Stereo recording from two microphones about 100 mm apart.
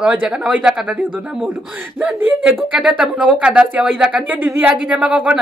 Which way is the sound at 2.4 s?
15° right (ahead or behind).